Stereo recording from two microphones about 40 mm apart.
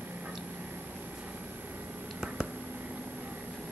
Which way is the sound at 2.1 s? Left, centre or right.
Right.